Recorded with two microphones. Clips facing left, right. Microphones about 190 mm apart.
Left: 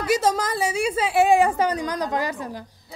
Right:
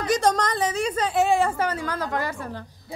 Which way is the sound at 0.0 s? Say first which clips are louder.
Even; 5° left (ahead or behind).